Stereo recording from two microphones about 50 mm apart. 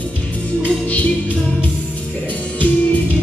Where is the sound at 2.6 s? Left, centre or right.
Left.